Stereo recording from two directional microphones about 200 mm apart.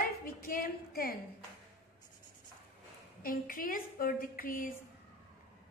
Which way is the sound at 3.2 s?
45° left (ahead or behind).